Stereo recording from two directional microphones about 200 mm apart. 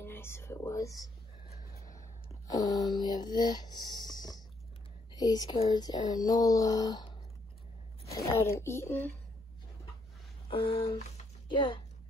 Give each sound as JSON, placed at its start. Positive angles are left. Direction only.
{"t": 0.0, "sound": "whispering", "side_deg": 10}
{"t": 1.9, "sound": "a sound", "side_deg": 15}
{"t": 5.1, "sound": "speech", "side_deg": 20}
{"t": 10.5, "sound": "speech", "side_deg": 25}